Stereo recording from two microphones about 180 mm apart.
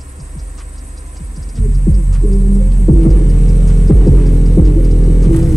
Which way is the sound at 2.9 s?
Centre (ahead or behind).